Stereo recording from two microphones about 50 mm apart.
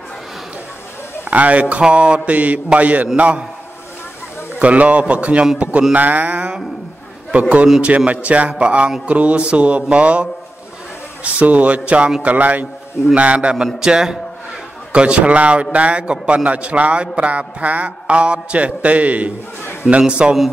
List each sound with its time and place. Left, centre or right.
1.3 s a man's voice: right
4.6 s a man's voice: right
11.2 s a man's voice: right
13.7 s a man's voice: centre
14.9 s a man's voice: right